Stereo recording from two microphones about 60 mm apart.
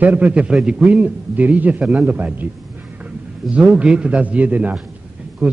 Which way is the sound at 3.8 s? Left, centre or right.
Centre.